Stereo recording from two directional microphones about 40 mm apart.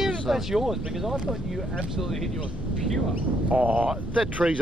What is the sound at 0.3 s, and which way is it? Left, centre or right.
Speech, centre.